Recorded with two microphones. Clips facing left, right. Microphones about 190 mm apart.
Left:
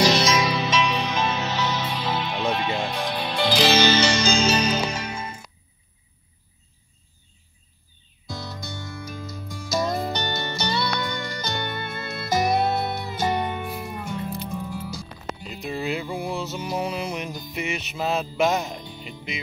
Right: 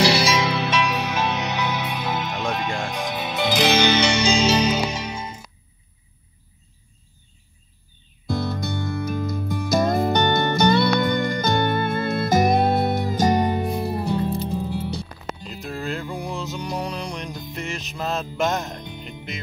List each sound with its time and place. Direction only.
0.0 s music: 10° right (ahead or behind)
1.3 s music: 15° right (ahead or behind)
2.4 s music: centre (ahead or behind)
3.7 s music: 15° right (ahead or behind)
8.3 s music: 55° right (ahead or behind); by 14.9 s 30° right (ahead or behind)
15.4 s a sound: centre (ahead or behind)
16.1 s music: centre (ahead or behind)